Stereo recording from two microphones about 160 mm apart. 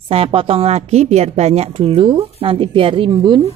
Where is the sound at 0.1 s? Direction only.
35° right (ahead or behind).